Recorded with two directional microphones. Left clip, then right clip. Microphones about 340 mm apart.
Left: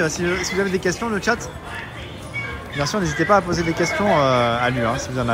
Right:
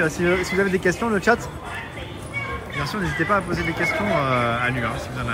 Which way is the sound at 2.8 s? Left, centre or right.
Centre.